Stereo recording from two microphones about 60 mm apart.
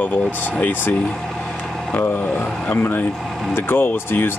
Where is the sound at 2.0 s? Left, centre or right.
Left.